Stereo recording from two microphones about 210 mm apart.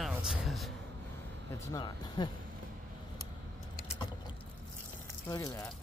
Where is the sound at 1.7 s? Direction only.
20° left (ahead or behind).